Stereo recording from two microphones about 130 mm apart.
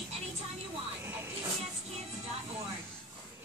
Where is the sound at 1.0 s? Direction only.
15° right (ahead or behind).